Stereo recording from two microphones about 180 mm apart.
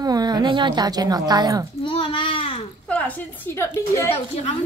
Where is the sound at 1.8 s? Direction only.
30° left (ahead or behind).